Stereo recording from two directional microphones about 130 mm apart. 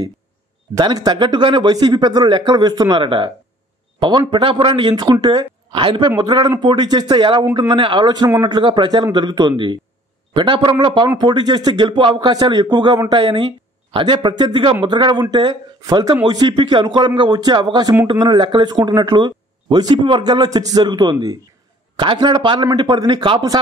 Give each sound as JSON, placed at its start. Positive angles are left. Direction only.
{"t": 0.7, "sound": "speech", "side_deg": -30}